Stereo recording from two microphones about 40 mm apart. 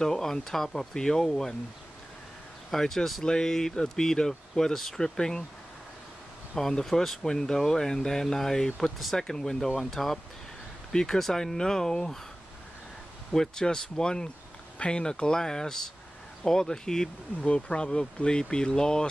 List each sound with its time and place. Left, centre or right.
0.0 s speech: centre
2.7 s speech: centre
6.7 s speech: centre
8.7 s speech: centre
10.9 s speech: centre
13.3 s speech: centre
17.4 s speech: left